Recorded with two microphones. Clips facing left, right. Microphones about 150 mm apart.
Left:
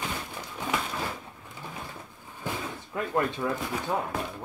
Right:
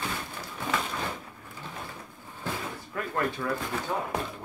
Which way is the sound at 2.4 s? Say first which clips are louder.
Left 1 dB; 20° left (ahead or behind).